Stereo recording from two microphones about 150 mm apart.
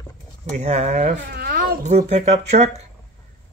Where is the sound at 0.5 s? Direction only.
45° right (ahead or behind).